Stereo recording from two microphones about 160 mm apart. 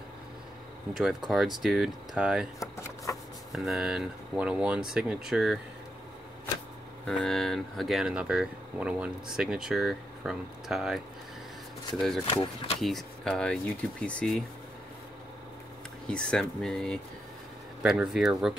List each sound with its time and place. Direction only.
0.9 s speech: centre (ahead or behind)
2.6 s speech: 20° left (ahead or behind)
3.5 s speech: centre (ahead or behind)
7.1 s speech: 5° left (ahead or behind)
12.3 s speech: 35° left (ahead or behind)
12.8 s speech: centre (ahead or behind)
16.1 s speech: 5° left (ahead or behind)